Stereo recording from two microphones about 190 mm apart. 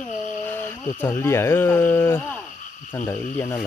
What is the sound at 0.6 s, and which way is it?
Speech, 10° left (ahead or behind).